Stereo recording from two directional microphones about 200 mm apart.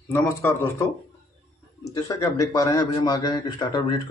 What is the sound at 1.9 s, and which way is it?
Speech, 15° left (ahead or behind).